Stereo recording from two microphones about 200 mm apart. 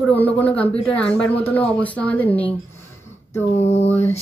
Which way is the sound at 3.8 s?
30° left (ahead or behind).